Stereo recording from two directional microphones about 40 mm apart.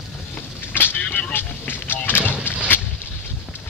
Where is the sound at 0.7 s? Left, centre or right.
Left.